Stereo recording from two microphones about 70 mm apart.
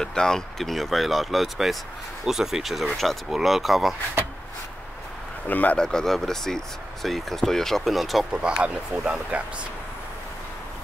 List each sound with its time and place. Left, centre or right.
0.0 s speech: centre
5.5 s speech: left
5.8 s speech: centre
8.4 s speech: centre